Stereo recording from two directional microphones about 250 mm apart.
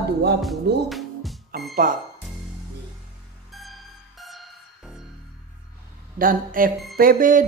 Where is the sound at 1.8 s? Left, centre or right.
Right.